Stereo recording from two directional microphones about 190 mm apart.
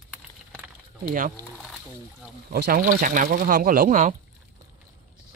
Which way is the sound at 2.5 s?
50° right (ahead or behind).